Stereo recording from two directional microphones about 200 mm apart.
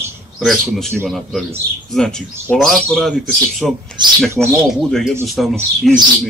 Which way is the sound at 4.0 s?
20° right (ahead or behind).